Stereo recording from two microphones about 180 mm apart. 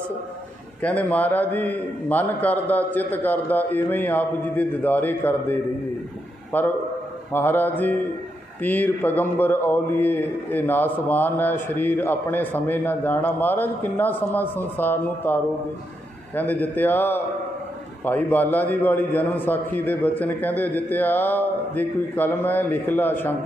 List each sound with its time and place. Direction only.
0.8 s a man's voice: 10° left (ahead or behind)